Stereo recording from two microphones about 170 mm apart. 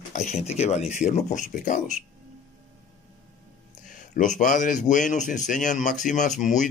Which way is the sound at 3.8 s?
50° left (ahead or behind).